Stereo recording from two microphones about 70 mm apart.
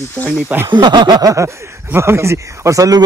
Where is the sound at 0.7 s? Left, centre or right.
Right.